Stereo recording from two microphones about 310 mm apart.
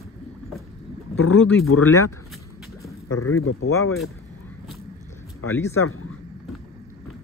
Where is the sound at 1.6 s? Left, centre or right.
Left.